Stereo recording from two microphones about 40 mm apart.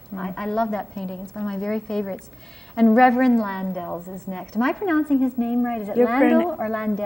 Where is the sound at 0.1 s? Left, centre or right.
Centre.